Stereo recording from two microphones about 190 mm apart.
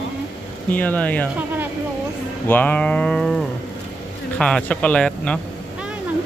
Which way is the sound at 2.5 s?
10° left (ahead or behind).